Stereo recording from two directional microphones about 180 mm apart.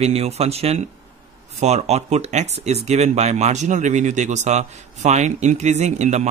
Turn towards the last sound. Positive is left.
turn(degrees=-40)  # may be behind; listen again after turning